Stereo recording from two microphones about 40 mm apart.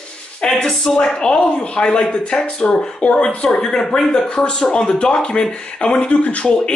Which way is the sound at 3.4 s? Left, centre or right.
Centre.